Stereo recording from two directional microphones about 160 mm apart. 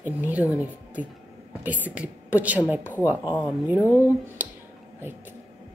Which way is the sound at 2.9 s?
15° left (ahead or behind).